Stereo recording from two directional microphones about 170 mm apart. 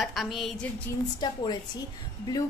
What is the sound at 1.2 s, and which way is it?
Speech, 25° left (ahead or behind).